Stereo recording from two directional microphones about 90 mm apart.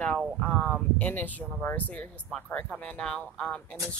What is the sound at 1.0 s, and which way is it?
Speech, 20° left (ahead or behind).